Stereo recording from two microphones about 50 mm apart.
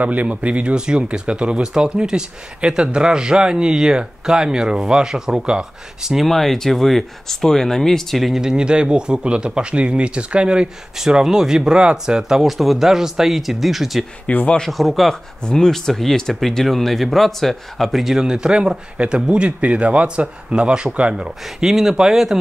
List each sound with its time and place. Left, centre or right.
0.0 s speech: right; by 6.2 s centre
6.2 s speech: centre
8.4 s speech: centre
14.2 s speech: left
14.7 s speech: centre